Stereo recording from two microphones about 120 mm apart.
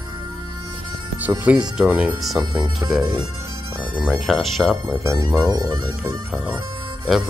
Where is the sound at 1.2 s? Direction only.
10° right (ahead or behind).